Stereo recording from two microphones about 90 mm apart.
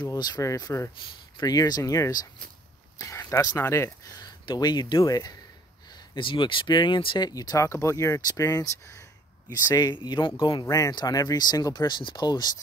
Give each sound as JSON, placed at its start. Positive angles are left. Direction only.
{"t": 0.0, "sound": "speech", "side_deg": 50}
{"t": 1.3, "sound": "speech", "side_deg": 45}
{"t": 3.2, "sound": "speech", "side_deg": 35}
{"t": 4.6, "sound": "speech", "side_deg": 50}
{"t": 5.9, "sound": "speech", "side_deg": 60}
{"t": 7.2, "sound": "speech", "side_deg": 45}
{"t": 9.8, "sound": "speech", "side_deg": 55}
{"t": 10.5, "sound": "speech", "side_deg": 40}